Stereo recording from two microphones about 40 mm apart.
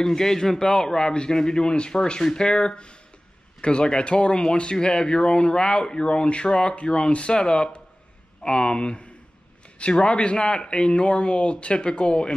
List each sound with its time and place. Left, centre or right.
0.0 s a man's voice: centre